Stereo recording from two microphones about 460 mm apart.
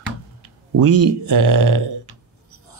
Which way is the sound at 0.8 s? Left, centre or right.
Right.